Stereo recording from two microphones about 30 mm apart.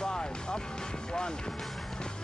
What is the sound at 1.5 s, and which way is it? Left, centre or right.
Speech, centre.